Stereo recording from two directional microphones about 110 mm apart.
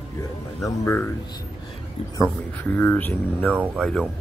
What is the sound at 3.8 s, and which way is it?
Speech, 5° left (ahead or behind).